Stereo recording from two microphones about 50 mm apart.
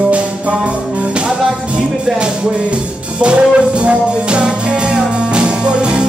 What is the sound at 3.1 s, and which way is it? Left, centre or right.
Music, right.